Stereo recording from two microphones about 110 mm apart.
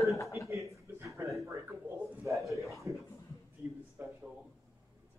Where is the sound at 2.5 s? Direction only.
Centre (ahead or behind).